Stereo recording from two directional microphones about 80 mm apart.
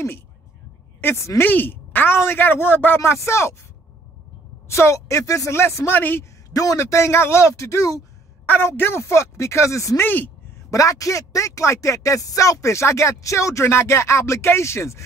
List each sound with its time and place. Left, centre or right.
1.0 s speech: left
1.4 s speech: left
4.6 s speech: left
6.5 s speech: left
8.5 s speech: left
10.0 s speech: left
10.7 s speech: left